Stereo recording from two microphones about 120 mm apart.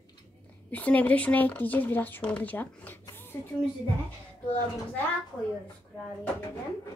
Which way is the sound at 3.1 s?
15° left (ahead or behind).